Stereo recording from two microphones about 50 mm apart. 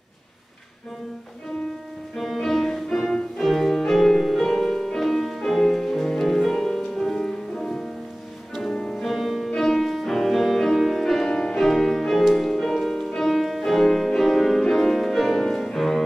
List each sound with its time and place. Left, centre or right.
2.1 s music: centre
8.9 s music: centre
11.2 s music: centre
11.5 s music: centre